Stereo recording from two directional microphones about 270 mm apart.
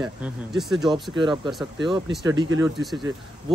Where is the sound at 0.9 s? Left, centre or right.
Centre.